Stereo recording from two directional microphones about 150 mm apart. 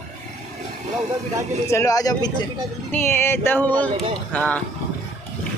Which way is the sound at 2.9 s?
15° left (ahead or behind).